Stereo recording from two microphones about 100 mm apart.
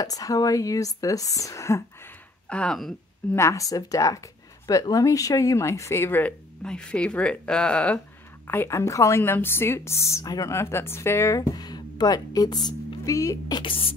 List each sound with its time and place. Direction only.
0.0 s speech: 35° left (ahead or behind)
2.5 s speech: 10° left (ahead or behind)
3.3 s speech: 30° left (ahead or behind)
6.6 s speech: 10° left (ahead or behind)
8.5 s a woman's voice: 25° left (ahead or behind)
10.5 s a woman's voice: 25° left (ahead or behind)
11.5 s speech: 45° left (ahead or behind)
13.6 s speech: 65° left (ahead or behind)